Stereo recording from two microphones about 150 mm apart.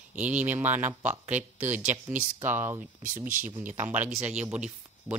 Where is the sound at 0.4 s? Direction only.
10° right (ahead or behind).